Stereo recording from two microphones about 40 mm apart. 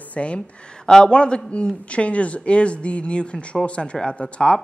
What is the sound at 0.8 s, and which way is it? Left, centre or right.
A man's voice, centre.